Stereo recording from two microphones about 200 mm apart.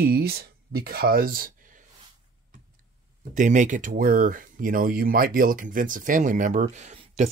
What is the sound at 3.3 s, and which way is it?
Speech, 40° right (ahead or behind).